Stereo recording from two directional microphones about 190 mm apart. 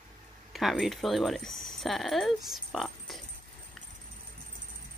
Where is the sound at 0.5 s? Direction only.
Centre (ahead or behind).